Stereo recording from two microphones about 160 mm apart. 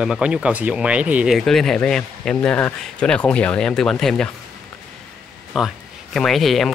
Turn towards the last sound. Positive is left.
turn(degrees=0)  # may be behind; listen again after turning